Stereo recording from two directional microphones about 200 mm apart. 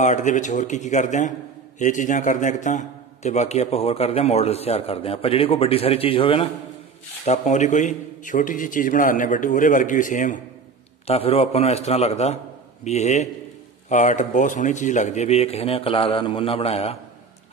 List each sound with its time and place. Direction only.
0.0 s a man's voice: 40° left (ahead or behind)
11.1 s a man's voice: 30° left (ahead or behind)